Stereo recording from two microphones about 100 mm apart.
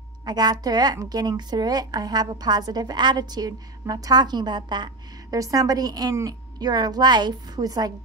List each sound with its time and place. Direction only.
0.2 s speech: 45° right (ahead or behind)
5.4 s a woman's voice: 35° right (ahead or behind)